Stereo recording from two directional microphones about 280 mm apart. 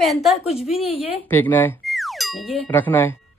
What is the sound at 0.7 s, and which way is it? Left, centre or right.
Speech, left.